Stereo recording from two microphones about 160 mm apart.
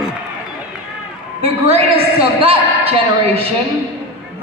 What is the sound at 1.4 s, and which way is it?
Speech, 35° right (ahead or behind).